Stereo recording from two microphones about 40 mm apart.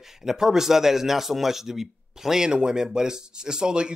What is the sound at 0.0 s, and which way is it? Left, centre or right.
Speech, centre.